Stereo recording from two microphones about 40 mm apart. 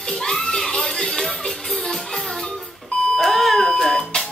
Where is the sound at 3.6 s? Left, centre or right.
Centre.